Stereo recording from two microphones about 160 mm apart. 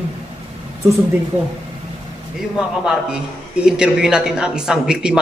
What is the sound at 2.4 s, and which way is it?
A man's voice, 5° right (ahead or behind).